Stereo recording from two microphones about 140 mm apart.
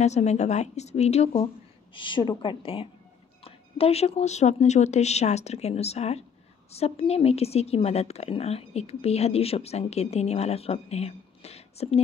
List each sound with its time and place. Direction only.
0.0 s speech: 55° left (ahead or behind)
2.0 s a woman's voice: 35° left (ahead or behind)